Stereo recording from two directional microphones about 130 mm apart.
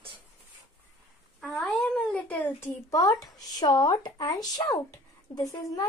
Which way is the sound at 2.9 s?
25° left (ahead or behind).